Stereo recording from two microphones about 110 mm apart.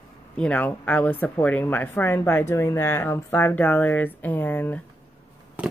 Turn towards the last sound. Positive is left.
turn(degrees=-10)  # may be behind; listen again after turning